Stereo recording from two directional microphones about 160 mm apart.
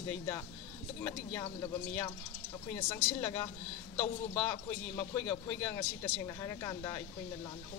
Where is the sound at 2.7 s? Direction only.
15° left (ahead or behind).